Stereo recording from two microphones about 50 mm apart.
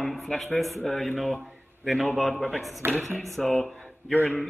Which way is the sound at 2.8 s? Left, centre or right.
Right.